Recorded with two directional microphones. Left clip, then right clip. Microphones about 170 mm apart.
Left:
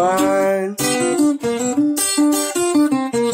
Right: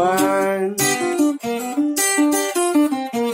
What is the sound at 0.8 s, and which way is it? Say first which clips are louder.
Guitar: left 1 dB; 35° left (ahead or behind).